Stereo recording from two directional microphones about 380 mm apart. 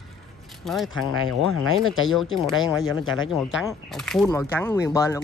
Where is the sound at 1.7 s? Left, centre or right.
Left.